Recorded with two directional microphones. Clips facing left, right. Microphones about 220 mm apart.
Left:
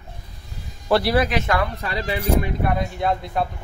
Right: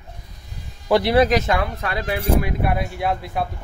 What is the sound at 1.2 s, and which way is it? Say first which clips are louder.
Speech: right 4 dB; 40° right (ahead or behind).